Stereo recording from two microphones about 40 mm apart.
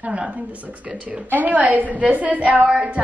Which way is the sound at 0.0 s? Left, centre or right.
Right.